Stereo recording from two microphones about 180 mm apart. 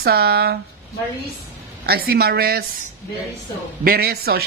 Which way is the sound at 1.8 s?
60° right (ahead or behind).